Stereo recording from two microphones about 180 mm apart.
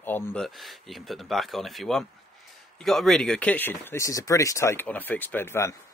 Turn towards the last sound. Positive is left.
turn(degrees=15)  # may be behind; listen again after turning